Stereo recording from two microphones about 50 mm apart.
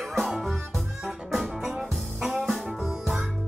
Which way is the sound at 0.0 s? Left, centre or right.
Centre.